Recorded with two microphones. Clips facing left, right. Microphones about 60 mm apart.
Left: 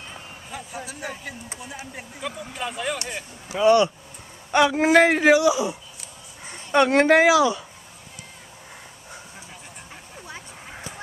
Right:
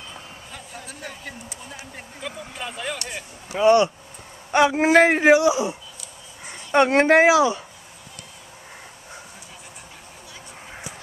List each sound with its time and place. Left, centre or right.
0.5 s a sound: centre
1.6 s speech: centre
3.6 s a man's voice: right